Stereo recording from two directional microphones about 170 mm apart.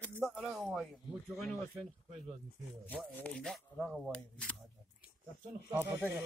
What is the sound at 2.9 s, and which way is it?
Speech, 10° left (ahead or behind).